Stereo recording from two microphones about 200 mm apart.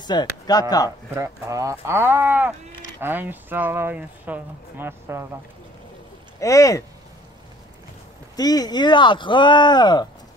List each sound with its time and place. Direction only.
0.0 s speech: 20° left (ahead or behind)
1.1 s speech: 15° right (ahead or behind)
6.4 s speech: 15° left (ahead or behind)
8.4 s speech: 20° left (ahead or behind)